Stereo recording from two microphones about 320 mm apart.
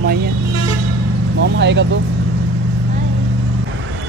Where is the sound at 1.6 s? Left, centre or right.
Right.